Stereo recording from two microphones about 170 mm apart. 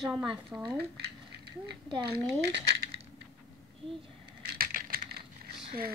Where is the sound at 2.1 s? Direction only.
70° right (ahead or behind).